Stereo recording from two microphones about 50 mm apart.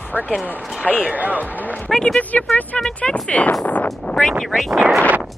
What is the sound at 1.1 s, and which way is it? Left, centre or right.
Speech, right.